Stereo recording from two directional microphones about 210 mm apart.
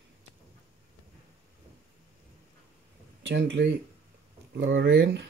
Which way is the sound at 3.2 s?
55° right (ahead or behind).